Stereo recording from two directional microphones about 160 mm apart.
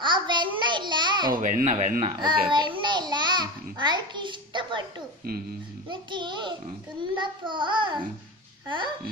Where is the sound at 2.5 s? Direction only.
30° right (ahead or behind).